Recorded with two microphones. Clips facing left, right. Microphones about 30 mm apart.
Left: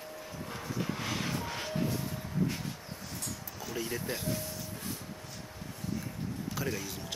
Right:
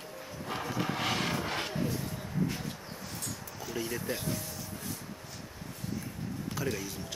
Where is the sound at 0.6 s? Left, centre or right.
Right.